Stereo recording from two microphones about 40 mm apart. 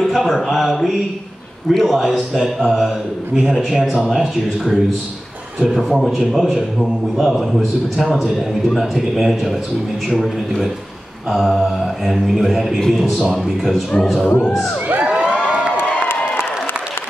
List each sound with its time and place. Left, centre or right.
0.0 s a man's voice: centre
15.0 s cheering: right